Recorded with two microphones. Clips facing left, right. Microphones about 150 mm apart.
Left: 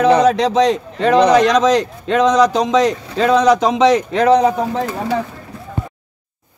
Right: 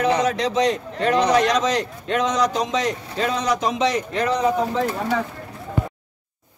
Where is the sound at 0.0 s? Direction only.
90° left.